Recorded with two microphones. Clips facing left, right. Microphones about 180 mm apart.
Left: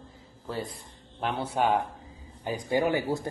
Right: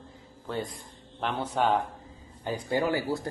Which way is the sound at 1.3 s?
10° left (ahead or behind).